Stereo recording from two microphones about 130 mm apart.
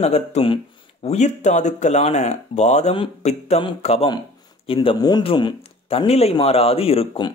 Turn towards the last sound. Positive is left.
turn(degrees=45)  # may be behind; listen again after turning